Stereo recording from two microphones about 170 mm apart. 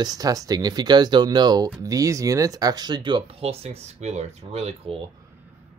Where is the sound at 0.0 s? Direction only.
20° right (ahead or behind).